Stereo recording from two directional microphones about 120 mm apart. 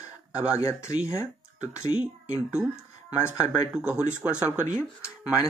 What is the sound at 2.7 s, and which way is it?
Speech, 20° left (ahead or behind).